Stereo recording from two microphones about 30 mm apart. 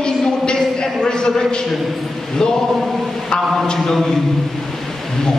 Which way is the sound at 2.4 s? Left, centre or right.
Left.